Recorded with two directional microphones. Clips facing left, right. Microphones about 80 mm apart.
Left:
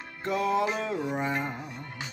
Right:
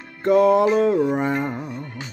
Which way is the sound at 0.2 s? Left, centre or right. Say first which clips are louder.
Right 11 dB; right.